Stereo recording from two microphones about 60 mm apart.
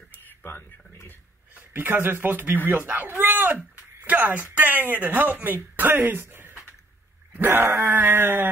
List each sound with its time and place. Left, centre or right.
0.4 s speech: left
1.5 s speech: right